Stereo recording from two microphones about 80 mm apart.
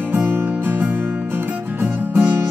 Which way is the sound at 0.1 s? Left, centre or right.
Right.